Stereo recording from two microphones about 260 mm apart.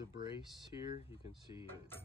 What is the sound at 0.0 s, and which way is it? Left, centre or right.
Speech, centre.